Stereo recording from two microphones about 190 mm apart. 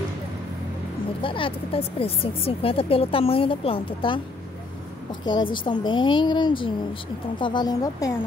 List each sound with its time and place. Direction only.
1.2 s speech: 25° left (ahead or behind)
5.2 s speech: 25° left (ahead or behind)